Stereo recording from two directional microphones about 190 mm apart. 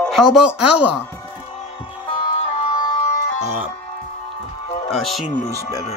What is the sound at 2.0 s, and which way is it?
Music, 30° left (ahead or behind).